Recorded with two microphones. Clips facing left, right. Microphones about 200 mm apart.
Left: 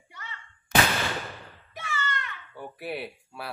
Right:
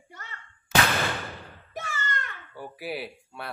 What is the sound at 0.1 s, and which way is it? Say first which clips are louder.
Artillery fire: left 1 dB; 45° right (ahead or behind).